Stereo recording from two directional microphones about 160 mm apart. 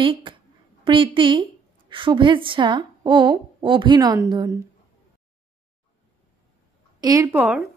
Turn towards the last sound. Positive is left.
turn(degrees=-10)  # may be behind; listen again after turning